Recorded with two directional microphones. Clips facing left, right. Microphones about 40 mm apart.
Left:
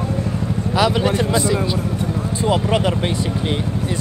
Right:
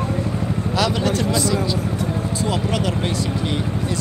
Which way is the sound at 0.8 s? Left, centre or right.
Centre.